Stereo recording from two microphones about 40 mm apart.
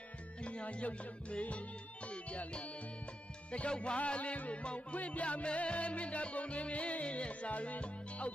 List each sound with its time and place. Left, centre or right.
0.4 s music: left